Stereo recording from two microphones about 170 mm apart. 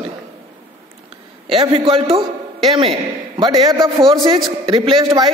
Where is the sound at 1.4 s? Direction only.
35° right (ahead or behind).